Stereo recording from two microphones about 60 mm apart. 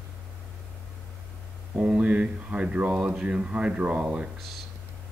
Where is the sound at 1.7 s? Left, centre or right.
Centre.